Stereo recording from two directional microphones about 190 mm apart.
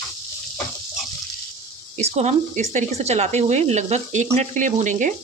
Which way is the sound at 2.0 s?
35° right (ahead or behind).